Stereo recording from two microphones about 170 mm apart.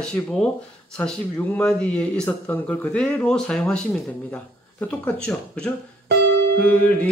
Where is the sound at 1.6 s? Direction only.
5° left (ahead or behind).